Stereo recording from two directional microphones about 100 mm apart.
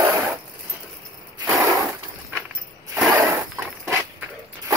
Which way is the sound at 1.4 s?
30° right (ahead or behind).